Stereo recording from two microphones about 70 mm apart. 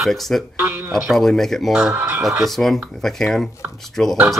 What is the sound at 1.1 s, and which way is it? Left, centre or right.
Speech, centre.